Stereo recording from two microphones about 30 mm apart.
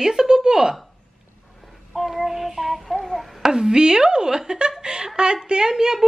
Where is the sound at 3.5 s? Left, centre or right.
Right.